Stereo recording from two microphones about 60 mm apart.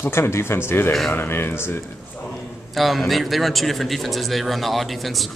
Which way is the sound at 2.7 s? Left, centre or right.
Centre.